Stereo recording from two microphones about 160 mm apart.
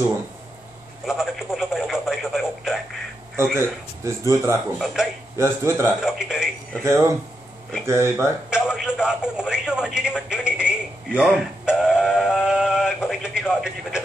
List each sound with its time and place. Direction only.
1.0 s radio: centre (ahead or behind)
3.5 s speech: 15° right (ahead or behind)
4.7 s a man's voice: centre (ahead or behind)
5.4 s speech: 15° right (ahead or behind)
6.0 s a sound: 5° right (ahead or behind)
6.8 s speech: 15° right (ahead or behind)
8.5 s radio: 5° right (ahead or behind)
12.4 s a sound: 5° right (ahead or behind)